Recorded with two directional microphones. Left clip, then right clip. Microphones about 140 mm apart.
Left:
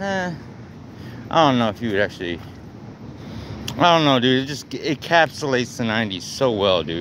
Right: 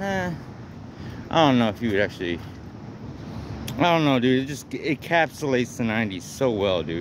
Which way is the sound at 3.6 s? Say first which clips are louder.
Left 5 dB; 15° right (ahead or behind).